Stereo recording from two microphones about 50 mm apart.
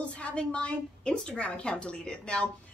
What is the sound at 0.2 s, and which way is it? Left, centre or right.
A woman's voice, left.